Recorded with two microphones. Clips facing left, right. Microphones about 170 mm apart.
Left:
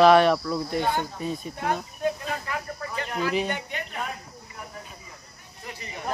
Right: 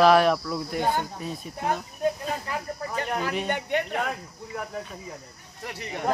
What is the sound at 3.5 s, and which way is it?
Speech, 60° right (ahead or behind).